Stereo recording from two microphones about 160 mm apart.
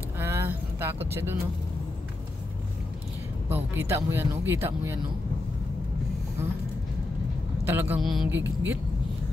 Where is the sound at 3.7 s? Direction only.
15° right (ahead or behind).